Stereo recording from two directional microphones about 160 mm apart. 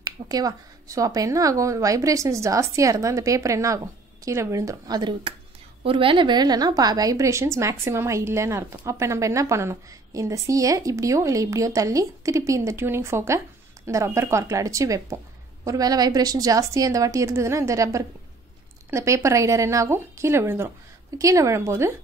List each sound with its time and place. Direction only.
0.0 s a woman's voice: 25° right (ahead or behind)